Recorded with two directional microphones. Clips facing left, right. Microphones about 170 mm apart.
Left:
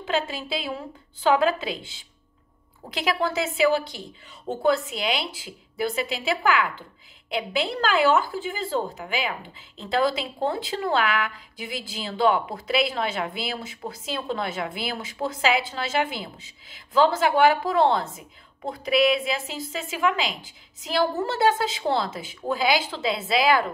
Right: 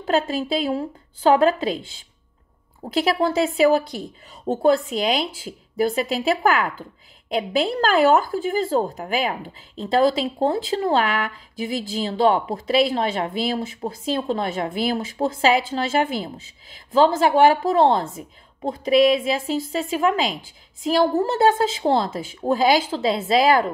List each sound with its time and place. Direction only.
0.0 s speech: 40° right (ahead or behind)
2.8 s speech: 35° right (ahead or behind)